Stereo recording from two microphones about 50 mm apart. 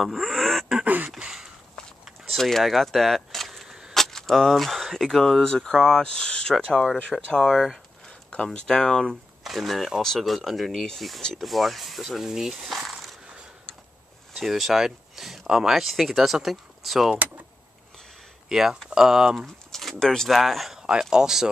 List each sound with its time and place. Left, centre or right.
0.0 s a sound: centre
0.8 s a sound: right
1.1 s a sound: centre
2.2 s speech: centre
7.3 s speech: centre
8.6 s speech: centre
9.4 s speech: centre
14.3 s speech: centre
15.1 s a sound: centre
15.4 s speech: centre
15.7 s speech: centre
18.5 s speech: centre
19.3 s speech: centre